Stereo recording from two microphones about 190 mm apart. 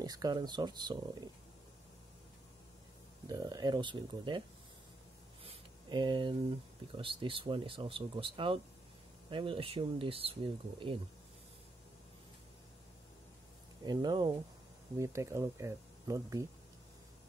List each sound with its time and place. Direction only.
0.0 s speech: 20° right (ahead or behind)
3.3 s speech: 20° right (ahead or behind)
5.4 s a sound: 25° right (ahead or behind)
7.0 s speech: 25° right (ahead or behind)
13.8 s speech: 20° right (ahead or behind)